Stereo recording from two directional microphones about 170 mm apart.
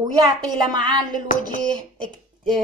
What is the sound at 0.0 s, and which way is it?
Speech, 25° right (ahead or behind).